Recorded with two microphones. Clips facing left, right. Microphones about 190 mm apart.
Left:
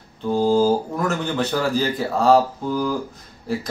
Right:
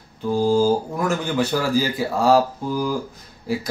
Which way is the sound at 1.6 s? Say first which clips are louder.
Even; 10° right (ahead or behind).